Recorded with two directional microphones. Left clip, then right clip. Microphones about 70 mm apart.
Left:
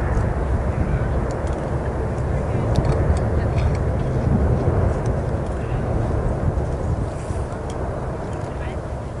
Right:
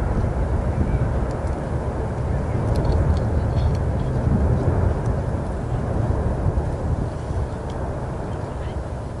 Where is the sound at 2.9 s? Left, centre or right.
Left.